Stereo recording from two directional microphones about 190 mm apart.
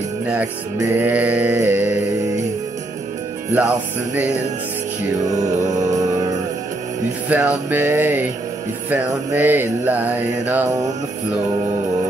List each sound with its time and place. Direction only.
0.3 s mantra: 10° right (ahead or behind)
3.6 s mantra: 10° right (ahead or behind)
5.3 s music: 40° right (ahead or behind)
7.2 s mantra: 5° right (ahead or behind)